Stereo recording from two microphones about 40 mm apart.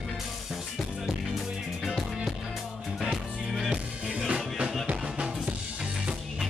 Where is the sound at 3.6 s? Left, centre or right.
Right.